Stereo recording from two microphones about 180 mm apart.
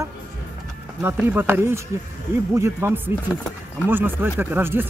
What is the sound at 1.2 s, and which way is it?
Speech, 10° right (ahead or behind).